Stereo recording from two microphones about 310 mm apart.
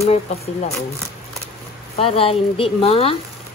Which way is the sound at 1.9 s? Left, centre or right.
Centre.